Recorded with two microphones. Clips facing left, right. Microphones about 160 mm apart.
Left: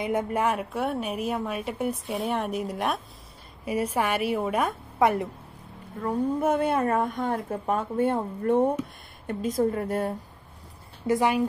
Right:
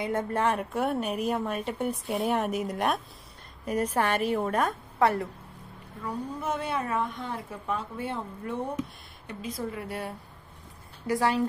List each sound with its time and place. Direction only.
0.0 s a woman's voice: 15° left (ahead or behind)
6.0 s a woman's voice: 55° left (ahead or behind)
11.1 s speech: 20° left (ahead or behind)